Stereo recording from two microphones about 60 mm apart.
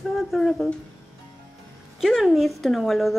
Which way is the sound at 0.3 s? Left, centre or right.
Centre.